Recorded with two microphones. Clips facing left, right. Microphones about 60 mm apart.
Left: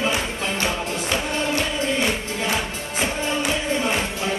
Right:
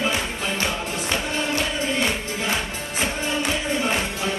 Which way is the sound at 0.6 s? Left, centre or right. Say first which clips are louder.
Left 1 dB; centre.